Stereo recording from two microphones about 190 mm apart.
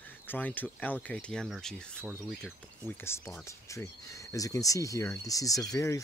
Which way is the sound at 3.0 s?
15° left (ahead or behind).